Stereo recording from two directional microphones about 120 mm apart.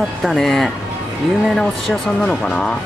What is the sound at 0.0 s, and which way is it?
Speech, centre (ahead or behind).